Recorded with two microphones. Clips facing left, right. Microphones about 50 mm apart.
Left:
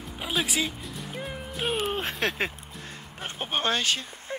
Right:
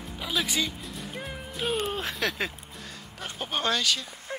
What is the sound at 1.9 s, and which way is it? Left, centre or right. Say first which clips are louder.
Speech: left 1 dB; left.